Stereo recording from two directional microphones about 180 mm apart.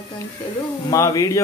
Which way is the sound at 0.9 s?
20° left (ahead or behind).